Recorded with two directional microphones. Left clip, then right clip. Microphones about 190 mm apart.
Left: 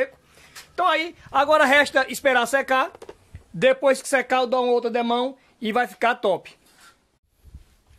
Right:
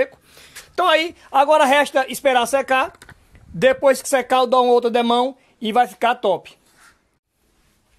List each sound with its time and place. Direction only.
0.7 s a woman's voice: 40° right (ahead or behind)
1.1 s a woman's voice: 25° right (ahead or behind)
1.4 s speech: 10° right (ahead or behind); by 5.3 s 25° right (ahead or behind)
5.6 s speech: 5° right (ahead or behind)